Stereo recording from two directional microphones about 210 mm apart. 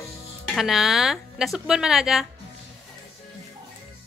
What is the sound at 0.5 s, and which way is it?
A woman's voice, centre (ahead or behind).